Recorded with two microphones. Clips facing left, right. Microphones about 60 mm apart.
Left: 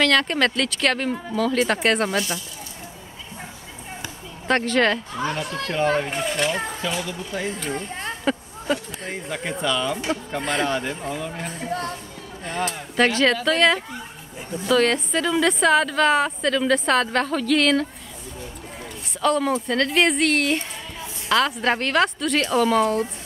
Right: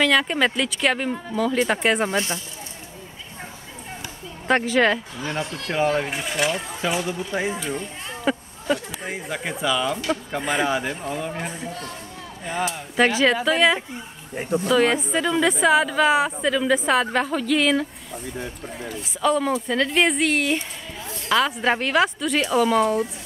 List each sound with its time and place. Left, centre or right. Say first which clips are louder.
0.0 s a woman's voice: even; centre
2.0 s speech: even; right
4.5 s a woman's voice: right 1 dB; centre
6.8 s a woman's voice: right 3 dB; right
14.3 s speech: right 8 dB; right
14.7 s a woman's voice: left 1 dB; centre
18.9 s speech: even; centre